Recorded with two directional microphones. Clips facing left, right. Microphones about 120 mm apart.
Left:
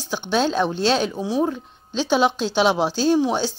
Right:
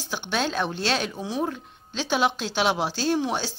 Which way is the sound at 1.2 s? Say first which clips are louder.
Left 6 dB; 15° left (ahead or behind).